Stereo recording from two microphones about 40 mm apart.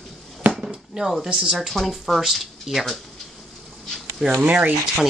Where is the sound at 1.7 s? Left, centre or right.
Centre.